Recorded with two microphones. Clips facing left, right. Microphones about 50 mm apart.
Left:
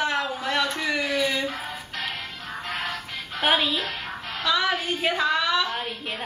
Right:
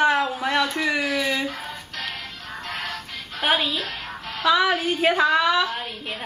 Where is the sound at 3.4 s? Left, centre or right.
Centre.